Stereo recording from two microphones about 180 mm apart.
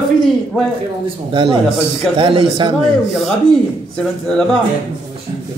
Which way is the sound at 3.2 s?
Centre (ahead or behind).